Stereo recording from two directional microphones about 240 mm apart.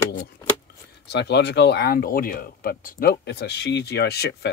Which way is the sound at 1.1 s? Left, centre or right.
Left.